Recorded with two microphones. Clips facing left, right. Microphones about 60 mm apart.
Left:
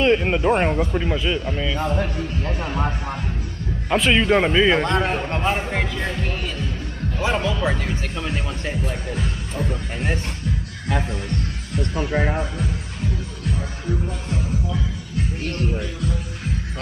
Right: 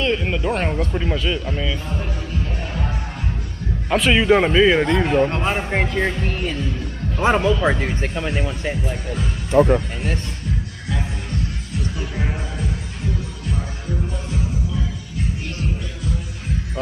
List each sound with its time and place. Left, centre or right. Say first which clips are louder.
0.0 s speech: left 3 dB; left; by 1.8 s centre
1.9 s speech: left 4 dB; left
3.9 s a man's voice: right 2 dB; centre
4.8 s a man's voice: right 1 dB; left
5.4 s speech: even; centre
5.9 s speech: right 4 dB; right
7.6 s speech: right 4 dB; right; by 9.2 s centre
9.5 s speech: right 14 dB; right
11.8 s speech: left 6 dB; left